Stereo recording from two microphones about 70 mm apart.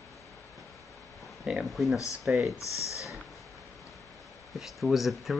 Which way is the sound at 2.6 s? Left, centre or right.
Left.